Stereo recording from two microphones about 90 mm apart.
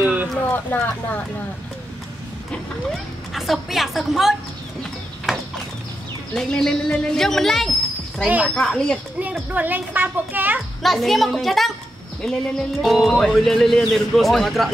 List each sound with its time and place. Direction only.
0.0 s a sound: 15° right (ahead or behind)
0.5 s speech: 20° left (ahead or behind)
2.5 s speech: centre (ahead or behind)
6.3 s speech: 10° left (ahead or behind)
9.5 s speech: 20° right (ahead or behind)
10.8 s speech: centre (ahead or behind)